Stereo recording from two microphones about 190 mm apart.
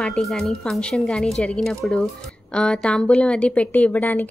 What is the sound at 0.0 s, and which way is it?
A woman's voice, 5° left (ahead or behind).